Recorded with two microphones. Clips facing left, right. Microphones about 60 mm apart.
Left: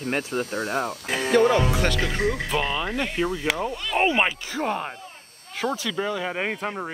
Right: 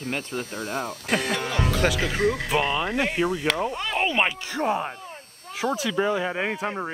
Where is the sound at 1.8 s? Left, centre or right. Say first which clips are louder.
Right 1 dB; centre.